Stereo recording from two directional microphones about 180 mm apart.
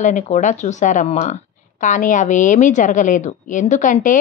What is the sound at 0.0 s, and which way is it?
Speech, 45° left (ahead or behind).